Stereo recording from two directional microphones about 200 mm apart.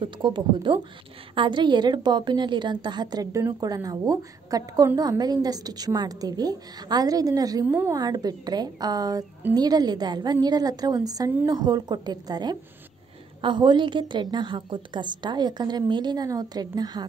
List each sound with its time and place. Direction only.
0.0 s a woman's voice: 25° right (ahead or behind)